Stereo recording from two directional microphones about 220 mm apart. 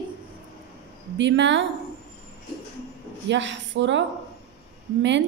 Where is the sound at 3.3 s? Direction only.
55° right (ahead or behind).